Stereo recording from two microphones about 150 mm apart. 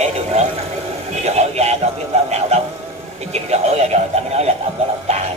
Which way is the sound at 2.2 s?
45° right (ahead or behind).